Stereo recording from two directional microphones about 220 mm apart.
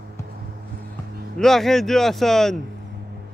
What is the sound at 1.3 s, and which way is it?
Speech, centre (ahead or behind).